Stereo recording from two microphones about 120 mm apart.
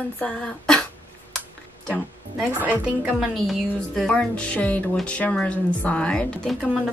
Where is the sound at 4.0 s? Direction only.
5° left (ahead or behind).